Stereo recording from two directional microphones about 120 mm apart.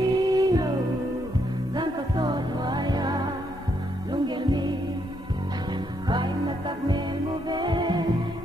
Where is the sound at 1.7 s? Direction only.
35° right (ahead or behind).